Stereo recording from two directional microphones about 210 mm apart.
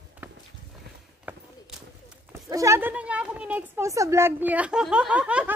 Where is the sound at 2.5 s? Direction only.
15° right (ahead or behind).